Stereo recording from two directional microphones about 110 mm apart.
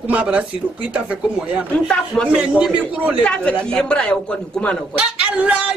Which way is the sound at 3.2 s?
10° left (ahead or behind).